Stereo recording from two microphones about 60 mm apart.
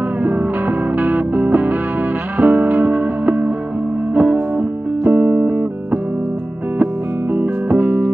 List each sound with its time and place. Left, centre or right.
0.9 s music: right
7.3 s music: right